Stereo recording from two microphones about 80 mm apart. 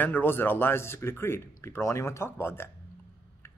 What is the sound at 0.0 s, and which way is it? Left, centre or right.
Speech, left.